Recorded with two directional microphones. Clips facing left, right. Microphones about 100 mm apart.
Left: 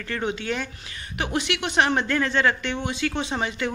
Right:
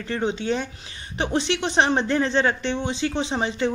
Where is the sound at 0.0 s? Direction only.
20° right (ahead or behind).